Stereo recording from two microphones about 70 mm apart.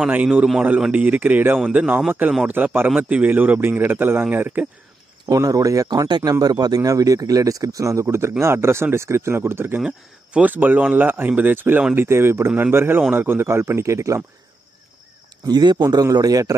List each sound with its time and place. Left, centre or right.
0.1 s speech: right
5.3 s speech: right
5.9 s a man's voice: right
9.8 s speech: centre
10.5 s speech: right
15.4 s a man's voice: right
16.1 s a man's voice: right